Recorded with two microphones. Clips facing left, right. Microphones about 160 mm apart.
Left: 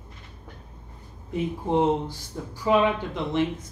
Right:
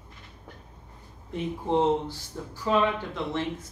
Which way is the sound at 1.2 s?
10° left (ahead or behind).